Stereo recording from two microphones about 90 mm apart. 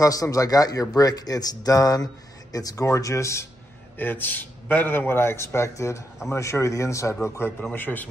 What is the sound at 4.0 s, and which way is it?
A man's voice, 20° left (ahead or behind).